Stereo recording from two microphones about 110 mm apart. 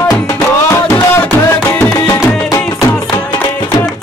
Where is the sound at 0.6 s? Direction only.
20° left (ahead or behind).